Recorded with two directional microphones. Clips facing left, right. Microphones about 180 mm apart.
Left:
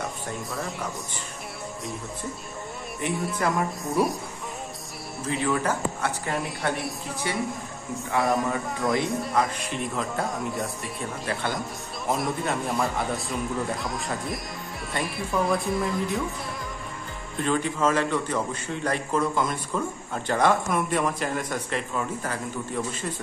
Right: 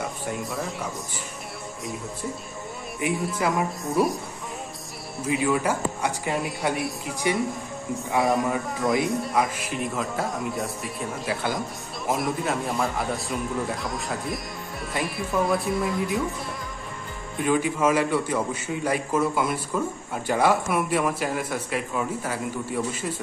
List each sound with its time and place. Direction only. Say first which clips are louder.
0.4 s speech: right 2 dB; centre (ahead or behind)
3.0 s speech: right 2 dB; 5° right (ahead or behind)
5.2 s speech: right 2 dB; 10° right (ahead or behind)
8.2 s speech: right 1 dB; centre (ahead or behind)
17.4 s speech: right 2 dB; 10° right (ahead or behind)